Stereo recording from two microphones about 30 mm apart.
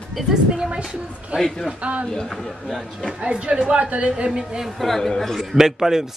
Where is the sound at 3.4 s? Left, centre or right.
Right.